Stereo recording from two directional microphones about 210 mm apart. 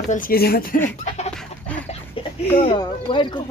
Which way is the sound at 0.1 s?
45° left (ahead or behind).